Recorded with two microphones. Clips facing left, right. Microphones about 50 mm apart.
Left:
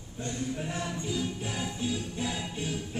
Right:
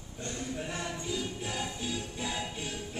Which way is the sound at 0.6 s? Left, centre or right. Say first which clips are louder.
Left 2 dB; centre.